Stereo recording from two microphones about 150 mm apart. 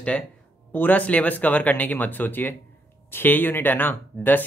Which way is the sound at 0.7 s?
10° left (ahead or behind).